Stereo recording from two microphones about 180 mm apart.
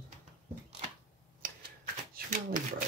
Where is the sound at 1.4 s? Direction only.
50° right (ahead or behind).